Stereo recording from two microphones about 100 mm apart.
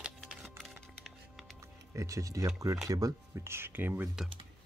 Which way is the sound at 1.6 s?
30° right (ahead or behind).